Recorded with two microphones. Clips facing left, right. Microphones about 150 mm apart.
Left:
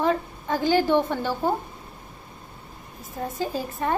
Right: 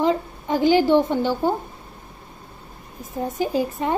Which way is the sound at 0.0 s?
15° right (ahead or behind).